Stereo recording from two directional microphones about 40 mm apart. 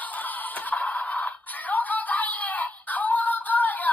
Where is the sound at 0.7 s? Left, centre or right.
Left.